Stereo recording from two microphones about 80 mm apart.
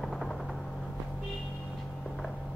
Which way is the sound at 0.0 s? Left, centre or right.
Centre.